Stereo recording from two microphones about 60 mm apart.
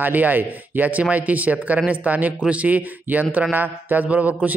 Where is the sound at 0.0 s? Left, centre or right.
Right.